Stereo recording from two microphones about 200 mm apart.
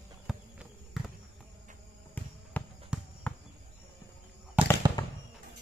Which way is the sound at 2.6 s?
10° left (ahead or behind).